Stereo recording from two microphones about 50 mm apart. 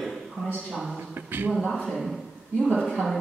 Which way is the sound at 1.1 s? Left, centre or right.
Right.